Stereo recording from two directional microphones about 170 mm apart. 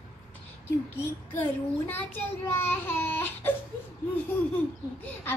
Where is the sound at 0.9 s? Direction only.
10° left (ahead or behind).